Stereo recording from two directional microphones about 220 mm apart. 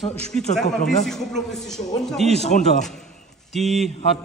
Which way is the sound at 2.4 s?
30° left (ahead or behind).